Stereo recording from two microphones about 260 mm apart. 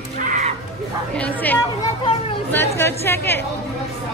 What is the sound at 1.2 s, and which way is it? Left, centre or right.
Chatter, centre.